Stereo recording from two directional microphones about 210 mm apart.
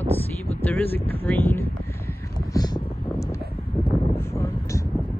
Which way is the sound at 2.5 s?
15° left (ahead or behind).